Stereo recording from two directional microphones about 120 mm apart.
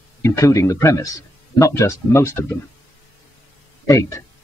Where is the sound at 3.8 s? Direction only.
25° left (ahead or behind).